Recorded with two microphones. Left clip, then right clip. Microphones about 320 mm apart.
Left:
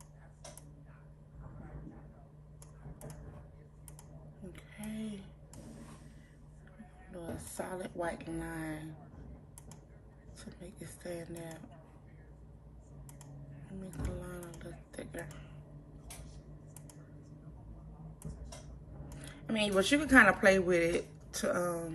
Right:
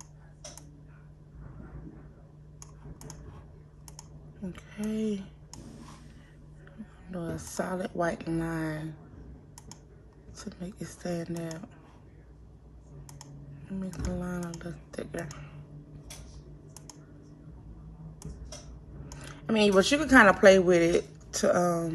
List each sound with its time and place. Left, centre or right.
4.5 s a sound: centre
7.5 s speech: centre
10.3 s speech: centre
14.0 s speech: centre
19.0 s speech: centre